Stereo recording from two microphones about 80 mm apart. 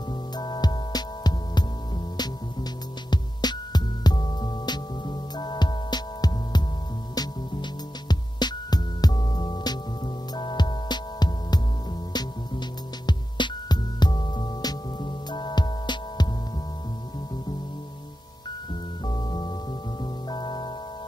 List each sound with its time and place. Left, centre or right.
0.4 s music: left
3.1 s music: left
19.0 s music: left